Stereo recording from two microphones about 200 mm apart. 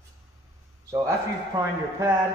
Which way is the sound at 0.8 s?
15° right (ahead or behind).